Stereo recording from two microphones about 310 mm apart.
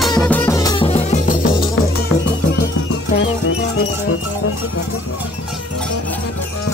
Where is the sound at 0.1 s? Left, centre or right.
Centre; by 4.6 s left.